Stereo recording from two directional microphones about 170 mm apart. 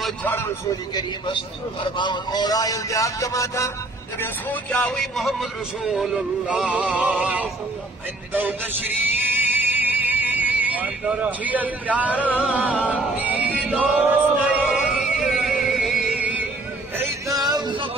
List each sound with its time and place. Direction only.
0.2 s a man's voice: 10° left (ahead or behind)
1.8 s a man's voice: 25° left (ahead or behind)
4.2 s music: 10° left (ahead or behind); by 16.4 s 10° right (ahead or behind)
17.3 s music: 20° right (ahead or behind)